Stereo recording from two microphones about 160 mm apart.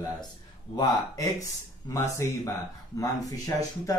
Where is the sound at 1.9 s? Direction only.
20° left (ahead or behind).